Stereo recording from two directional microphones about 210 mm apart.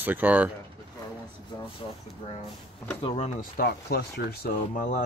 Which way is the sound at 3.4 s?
45° left (ahead or behind).